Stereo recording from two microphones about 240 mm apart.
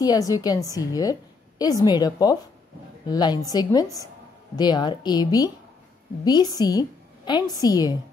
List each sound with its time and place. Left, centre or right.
0.0 s a woman's voice: centre